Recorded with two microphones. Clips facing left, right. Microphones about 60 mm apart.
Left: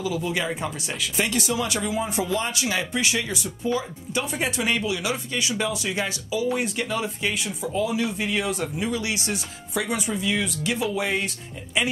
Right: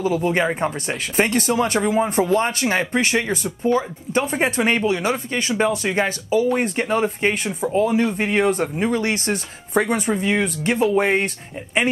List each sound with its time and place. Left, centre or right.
0.0 s speech: right